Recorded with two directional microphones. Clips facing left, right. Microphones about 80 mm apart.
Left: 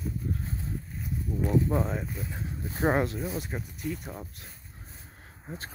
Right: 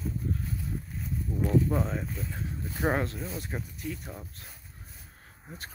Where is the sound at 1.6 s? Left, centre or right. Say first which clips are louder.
Left 1 dB; centre.